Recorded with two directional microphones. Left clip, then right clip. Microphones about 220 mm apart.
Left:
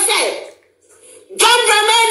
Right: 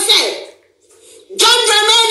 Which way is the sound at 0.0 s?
60° right (ahead or behind).